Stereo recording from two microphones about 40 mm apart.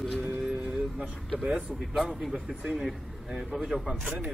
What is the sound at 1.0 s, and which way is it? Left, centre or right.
Speech, right.